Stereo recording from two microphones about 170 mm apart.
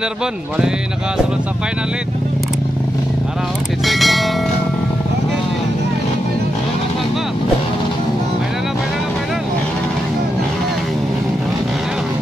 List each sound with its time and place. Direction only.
3.8 s bell: centre (ahead or behind)